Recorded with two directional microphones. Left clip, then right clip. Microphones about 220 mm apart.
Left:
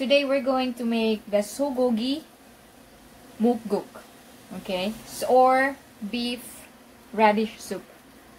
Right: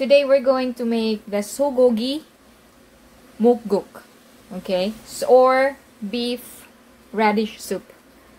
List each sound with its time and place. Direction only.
0.0 s a woman's voice: 35° right (ahead or behind)
4.6 s a woman's voice: 40° right (ahead or behind)